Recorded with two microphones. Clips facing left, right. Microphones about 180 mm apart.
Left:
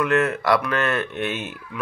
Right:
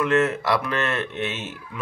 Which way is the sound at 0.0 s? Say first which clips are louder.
Even; 25° right (ahead or behind).